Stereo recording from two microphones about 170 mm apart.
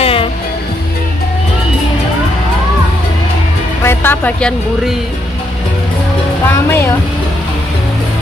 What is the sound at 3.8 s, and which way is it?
Music, 10° left (ahead or behind).